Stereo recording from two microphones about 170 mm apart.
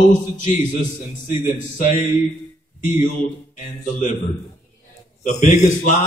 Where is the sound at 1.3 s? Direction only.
50° left (ahead or behind).